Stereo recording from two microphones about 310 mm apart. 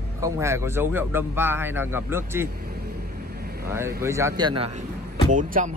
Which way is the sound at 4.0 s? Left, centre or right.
Centre.